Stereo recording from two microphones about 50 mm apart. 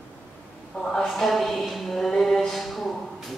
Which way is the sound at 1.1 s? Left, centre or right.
Centre.